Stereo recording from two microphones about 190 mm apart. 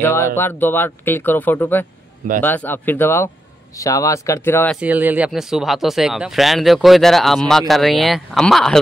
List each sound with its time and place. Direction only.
0.0 s speech: 15° left (ahead or behind)
4.7 s speech: 10° right (ahead or behind)